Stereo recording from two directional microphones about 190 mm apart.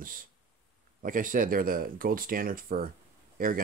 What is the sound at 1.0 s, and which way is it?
Speech, 45° right (ahead or behind).